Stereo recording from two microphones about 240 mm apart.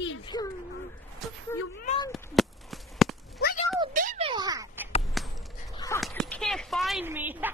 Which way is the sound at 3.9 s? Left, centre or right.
Right.